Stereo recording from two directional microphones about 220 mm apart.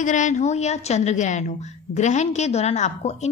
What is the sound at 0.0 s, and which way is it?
A woman's voice, 35° left (ahead or behind).